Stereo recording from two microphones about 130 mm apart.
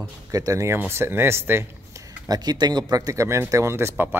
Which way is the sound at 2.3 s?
35° right (ahead or behind).